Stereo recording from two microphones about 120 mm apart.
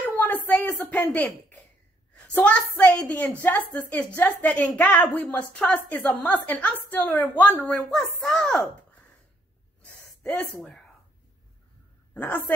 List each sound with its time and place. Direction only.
0.0 s a sound: 15° left (ahead or behind)
2.1 s a woman's voice: 10° left (ahead or behind)
10.2 s a woman's voice: 15° left (ahead or behind)
12.1 s a man's voice: 15° left (ahead or behind)